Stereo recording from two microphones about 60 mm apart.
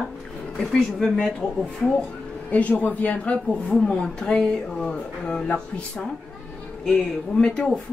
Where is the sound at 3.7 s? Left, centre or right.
Centre.